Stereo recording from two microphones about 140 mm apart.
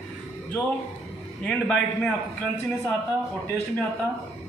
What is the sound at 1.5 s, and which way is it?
Speech, 5° left (ahead or behind).